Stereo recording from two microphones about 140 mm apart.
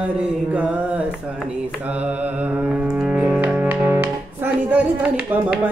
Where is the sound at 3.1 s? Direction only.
10° right (ahead or behind).